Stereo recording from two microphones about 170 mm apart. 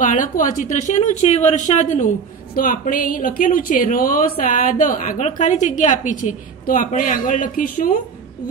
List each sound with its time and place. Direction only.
0.0 s speech: 50° left (ahead or behind)
2.5 s speech: 55° left (ahead or behind)